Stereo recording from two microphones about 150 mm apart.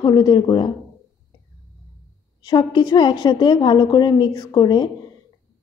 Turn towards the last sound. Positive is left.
turn(degrees=30)  # may be behind; listen again after turning